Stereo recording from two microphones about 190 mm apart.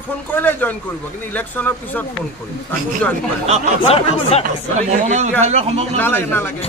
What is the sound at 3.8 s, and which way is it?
Speech, 30° left (ahead or behind).